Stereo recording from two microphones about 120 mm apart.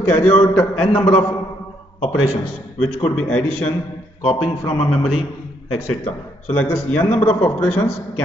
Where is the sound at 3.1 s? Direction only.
10° left (ahead or behind).